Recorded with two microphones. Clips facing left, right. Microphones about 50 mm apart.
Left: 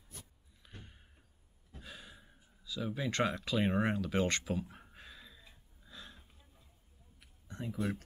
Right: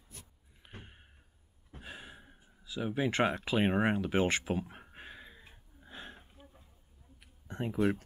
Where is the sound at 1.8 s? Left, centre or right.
Right.